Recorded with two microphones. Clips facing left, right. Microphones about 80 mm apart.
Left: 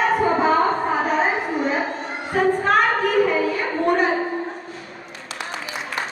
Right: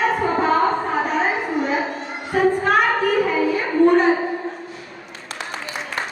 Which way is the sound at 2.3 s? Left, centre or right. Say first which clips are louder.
Right 1 dB; centre.